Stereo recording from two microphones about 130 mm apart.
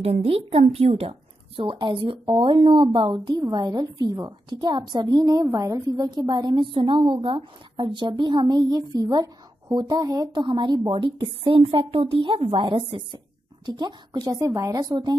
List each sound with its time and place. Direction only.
0.0 s a woman's voice: 50° right (ahead or behind); by 15.1 s 30° right (ahead or behind)